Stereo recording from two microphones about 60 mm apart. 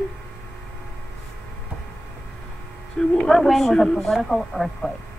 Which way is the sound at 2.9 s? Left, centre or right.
Centre.